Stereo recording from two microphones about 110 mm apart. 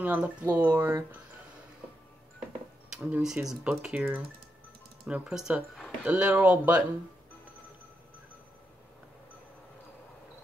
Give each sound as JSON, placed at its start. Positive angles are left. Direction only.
{"t": 0.0, "sound": "speech", "side_deg": -10}
{"t": 2.9, "sound": "speech", "side_deg": -5}